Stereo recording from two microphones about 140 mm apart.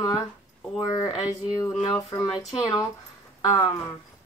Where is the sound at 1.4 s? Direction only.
25° left (ahead or behind).